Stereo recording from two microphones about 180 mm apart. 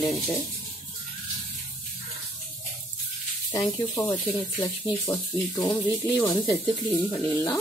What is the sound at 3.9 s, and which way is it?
Speech, 15° left (ahead or behind).